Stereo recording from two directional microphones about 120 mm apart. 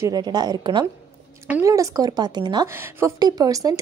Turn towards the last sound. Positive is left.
turn(degrees=-30)  # may be behind; listen again after turning